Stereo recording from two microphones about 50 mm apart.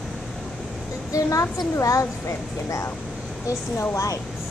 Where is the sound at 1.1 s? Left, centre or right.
Left.